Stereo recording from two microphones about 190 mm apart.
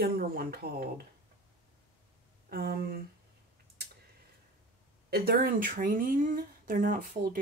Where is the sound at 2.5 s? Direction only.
50° right (ahead or behind).